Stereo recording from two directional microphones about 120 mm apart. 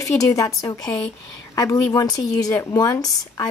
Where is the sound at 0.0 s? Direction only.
30° left (ahead or behind).